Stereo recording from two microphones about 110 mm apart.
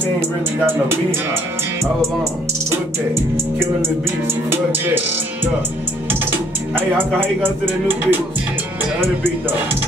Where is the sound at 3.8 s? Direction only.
20° right (ahead or behind).